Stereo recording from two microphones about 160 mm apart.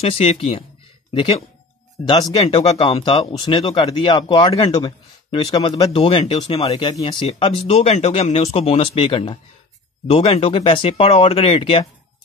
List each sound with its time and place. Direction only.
0.0 s speech: 40° left (ahead or behind)
2.0 s speech: 30° left (ahead or behind)